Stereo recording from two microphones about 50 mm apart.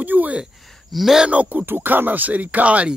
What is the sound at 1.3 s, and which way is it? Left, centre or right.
Speech, right.